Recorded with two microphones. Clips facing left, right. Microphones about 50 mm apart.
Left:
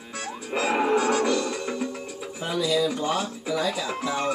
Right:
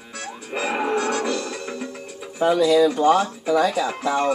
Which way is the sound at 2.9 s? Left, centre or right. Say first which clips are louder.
Right 9 dB; right.